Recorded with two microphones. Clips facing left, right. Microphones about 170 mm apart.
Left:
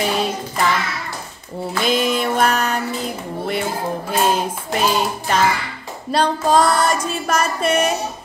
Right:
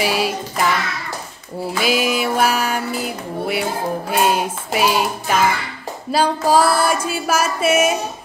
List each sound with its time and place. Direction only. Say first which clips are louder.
0.0 s child singing: right 1 dB; 5° right (ahead or behind)
1.7 s music: even; 5° right (ahead or behind)